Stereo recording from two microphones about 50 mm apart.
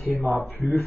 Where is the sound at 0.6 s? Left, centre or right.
Right.